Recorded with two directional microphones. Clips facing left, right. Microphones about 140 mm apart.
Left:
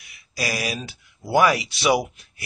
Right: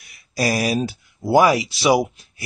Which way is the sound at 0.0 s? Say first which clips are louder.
Right 7 dB; 40° right (ahead or behind).